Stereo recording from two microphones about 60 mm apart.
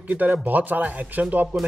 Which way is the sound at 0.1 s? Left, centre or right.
Right.